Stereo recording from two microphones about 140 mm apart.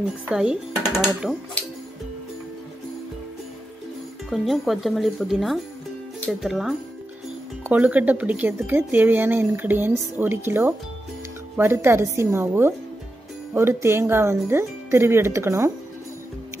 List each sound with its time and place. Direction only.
0.3 s speech: 5° right (ahead or behind)
4.3 s speech: centre (ahead or behind); by 15.7 s 20° right (ahead or behind)